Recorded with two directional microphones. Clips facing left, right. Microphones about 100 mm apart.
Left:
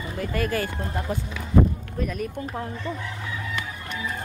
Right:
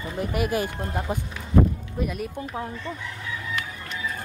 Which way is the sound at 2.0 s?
5° right (ahead or behind).